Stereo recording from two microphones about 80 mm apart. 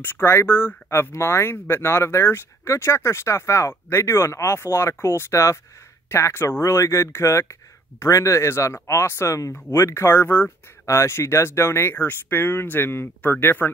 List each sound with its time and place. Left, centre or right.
0.0 s speech: left